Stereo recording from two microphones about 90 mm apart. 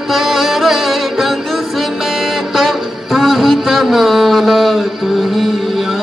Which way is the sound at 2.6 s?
Centre (ahead or behind).